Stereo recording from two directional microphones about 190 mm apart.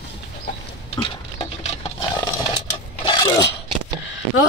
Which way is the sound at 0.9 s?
30° left (ahead or behind).